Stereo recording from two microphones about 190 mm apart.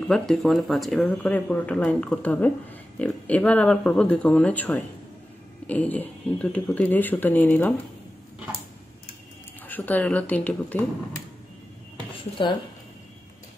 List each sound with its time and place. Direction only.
0.1 s speech: centre (ahead or behind)
9.7 s speech: 10° left (ahead or behind)
12.4 s speech: 25° left (ahead or behind)